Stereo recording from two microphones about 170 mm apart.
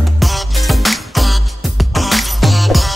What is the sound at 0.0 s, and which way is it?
Music, centre (ahead or behind).